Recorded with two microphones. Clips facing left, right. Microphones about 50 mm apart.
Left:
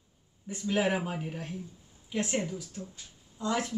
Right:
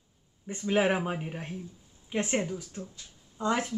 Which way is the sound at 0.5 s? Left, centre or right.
Right.